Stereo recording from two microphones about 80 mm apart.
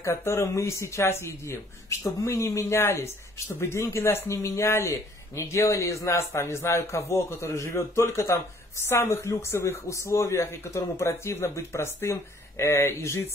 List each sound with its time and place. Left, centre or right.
0.0 s a man's voice: left